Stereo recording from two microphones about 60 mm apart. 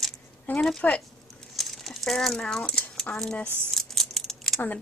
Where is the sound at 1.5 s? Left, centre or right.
Centre.